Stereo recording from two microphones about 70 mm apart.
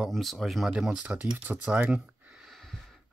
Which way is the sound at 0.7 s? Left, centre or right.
Centre.